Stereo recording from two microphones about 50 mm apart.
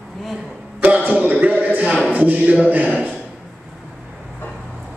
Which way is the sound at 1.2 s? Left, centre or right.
Right.